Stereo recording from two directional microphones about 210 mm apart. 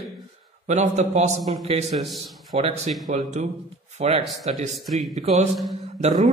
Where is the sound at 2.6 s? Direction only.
30° right (ahead or behind).